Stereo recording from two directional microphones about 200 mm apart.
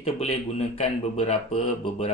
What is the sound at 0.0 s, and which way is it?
A man's voice, 30° left (ahead or behind).